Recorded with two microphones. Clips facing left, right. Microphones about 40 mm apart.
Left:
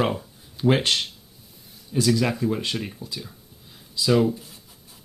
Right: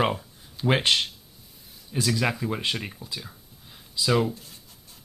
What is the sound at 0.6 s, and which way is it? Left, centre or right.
Speech, centre.